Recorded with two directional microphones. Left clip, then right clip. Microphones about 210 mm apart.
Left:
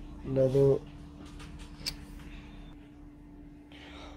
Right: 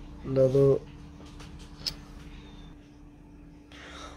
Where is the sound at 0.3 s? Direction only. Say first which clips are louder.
Right 3 dB; 15° right (ahead or behind).